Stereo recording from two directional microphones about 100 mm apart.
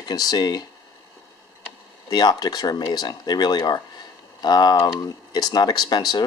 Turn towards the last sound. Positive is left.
turn(degrees=45)  # may be behind; listen again after turning